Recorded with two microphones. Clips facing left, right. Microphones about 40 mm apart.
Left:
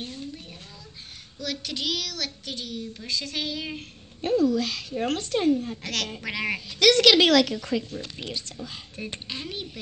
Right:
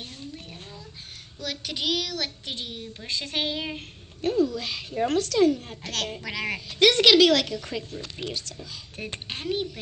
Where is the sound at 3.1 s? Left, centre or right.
Right.